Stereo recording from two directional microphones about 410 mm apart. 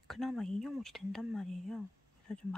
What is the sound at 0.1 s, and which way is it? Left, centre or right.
Speech, centre.